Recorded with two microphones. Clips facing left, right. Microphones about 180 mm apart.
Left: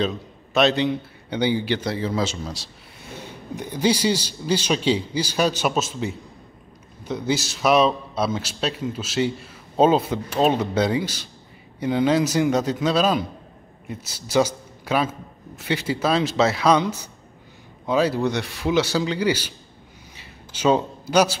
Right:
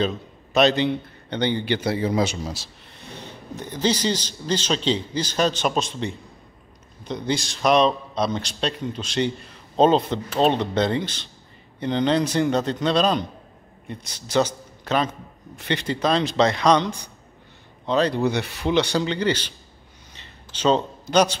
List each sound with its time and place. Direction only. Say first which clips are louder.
0.0 s a man's voice: even; centre (ahead or behind)
1.8 s a man's voice: right 2 dB; 10° right (ahead or behind)
3.5 s a man's voice: left 2 dB; 10° left (ahead or behind)
20.2 s a sound: left 1 dB; 10° left (ahead or behind)